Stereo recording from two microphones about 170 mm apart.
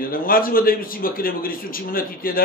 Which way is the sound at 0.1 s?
55° left (ahead or behind).